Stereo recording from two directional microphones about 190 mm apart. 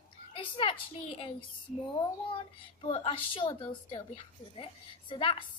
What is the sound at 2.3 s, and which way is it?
A woman's voice, 25° left (ahead or behind).